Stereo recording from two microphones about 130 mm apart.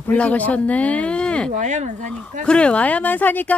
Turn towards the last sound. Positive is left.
turn(degrees=15)  # may be behind; listen again after turning